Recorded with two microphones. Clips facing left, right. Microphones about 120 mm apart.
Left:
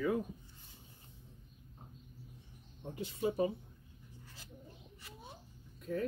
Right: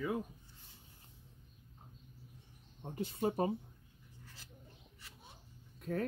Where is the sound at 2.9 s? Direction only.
50° right (ahead or behind).